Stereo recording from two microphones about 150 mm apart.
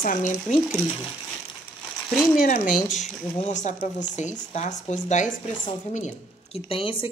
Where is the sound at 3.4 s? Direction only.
55° left (ahead or behind).